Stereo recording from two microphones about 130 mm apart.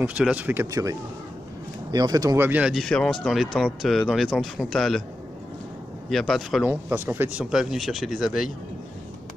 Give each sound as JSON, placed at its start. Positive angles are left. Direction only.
{"t": 0.0, "sound": "speech", "side_deg": -10}
{"t": 2.7, "sound": "speech", "side_deg": 5}
{"t": 6.0, "sound": "speech", "side_deg": 0}
{"t": 6.6, "sound": "speech", "side_deg": -15}
{"t": 7.5, "sound": "speech", "side_deg": 0}